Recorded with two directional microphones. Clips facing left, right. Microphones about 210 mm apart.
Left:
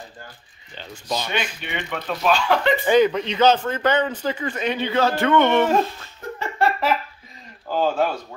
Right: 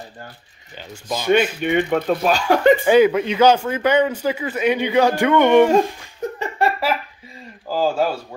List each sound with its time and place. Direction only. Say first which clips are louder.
0.7 s speech: right 1 dB; 5° right (ahead or behind)
1.2 s speech: right 11 dB; 50° right (ahead or behind)
2.9 s a man's voice: right 3 dB; 10° right (ahead or behind)